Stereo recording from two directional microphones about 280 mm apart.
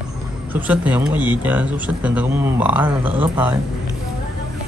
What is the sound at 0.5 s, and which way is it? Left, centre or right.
Speech, centre.